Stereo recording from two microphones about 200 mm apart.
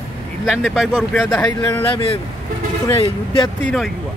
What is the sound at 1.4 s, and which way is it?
Speech, 15° left (ahead or behind).